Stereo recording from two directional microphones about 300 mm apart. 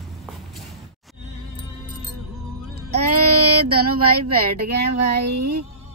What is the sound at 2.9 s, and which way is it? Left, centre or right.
Child singing, right.